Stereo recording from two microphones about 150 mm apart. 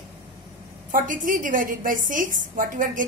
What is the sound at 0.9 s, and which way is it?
A woman's voice, 65° right (ahead or behind).